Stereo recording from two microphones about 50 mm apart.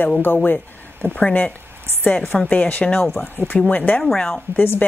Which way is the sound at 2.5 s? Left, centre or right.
Left.